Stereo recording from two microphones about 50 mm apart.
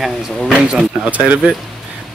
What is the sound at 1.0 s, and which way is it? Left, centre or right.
Speech, right.